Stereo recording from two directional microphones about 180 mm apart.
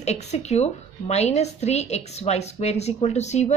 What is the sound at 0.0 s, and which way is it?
A woman's voice, 35° left (ahead or behind).